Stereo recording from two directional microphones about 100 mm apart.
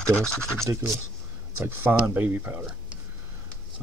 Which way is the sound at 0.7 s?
30° right (ahead or behind).